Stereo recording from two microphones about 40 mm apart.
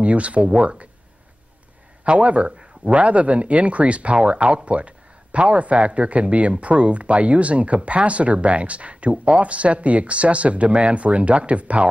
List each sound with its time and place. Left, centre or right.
0.0 s speech: right
2.0 s speech: right